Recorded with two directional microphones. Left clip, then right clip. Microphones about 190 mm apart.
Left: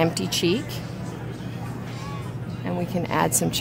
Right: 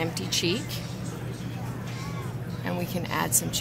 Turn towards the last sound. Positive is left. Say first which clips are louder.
# left 5 dB
turn(degrees=45)  # may be behind; listen again after turning